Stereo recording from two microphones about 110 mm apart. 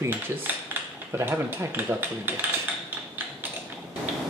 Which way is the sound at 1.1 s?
20° right (ahead or behind).